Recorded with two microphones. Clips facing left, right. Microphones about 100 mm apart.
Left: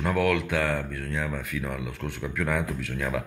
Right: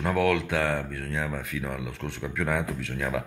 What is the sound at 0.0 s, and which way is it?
Speech, 30° right (ahead or behind).